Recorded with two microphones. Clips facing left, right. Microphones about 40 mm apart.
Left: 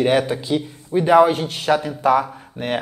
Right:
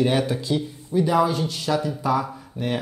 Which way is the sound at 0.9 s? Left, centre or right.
Left.